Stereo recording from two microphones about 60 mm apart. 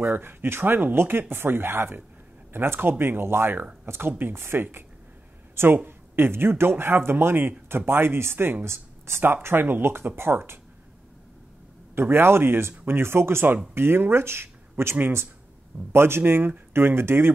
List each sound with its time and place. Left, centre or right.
0.1 s speech: right
5.9 s speech: right
11.9 s speech: right